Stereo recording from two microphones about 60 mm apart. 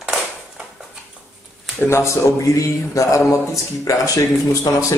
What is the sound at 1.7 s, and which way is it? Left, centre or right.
Speech, left.